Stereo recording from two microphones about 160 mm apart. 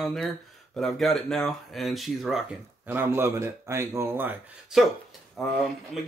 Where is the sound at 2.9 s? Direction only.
15° right (ahead or behind).